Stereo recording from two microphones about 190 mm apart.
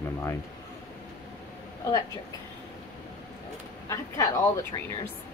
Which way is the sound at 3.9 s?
15° left (ahead or behind).